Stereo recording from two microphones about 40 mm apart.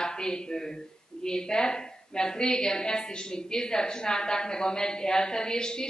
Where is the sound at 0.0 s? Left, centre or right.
Centre.